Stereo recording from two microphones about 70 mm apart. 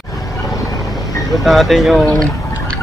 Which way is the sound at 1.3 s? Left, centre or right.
Centre.